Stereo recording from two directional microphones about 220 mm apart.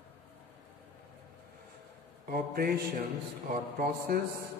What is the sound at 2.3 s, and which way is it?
A man's voice, 45° right (ahead or behind).